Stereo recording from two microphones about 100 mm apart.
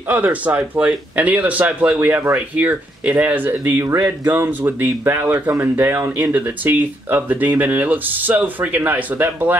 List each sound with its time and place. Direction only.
0.1 s speech: 15° right (ahead or behind)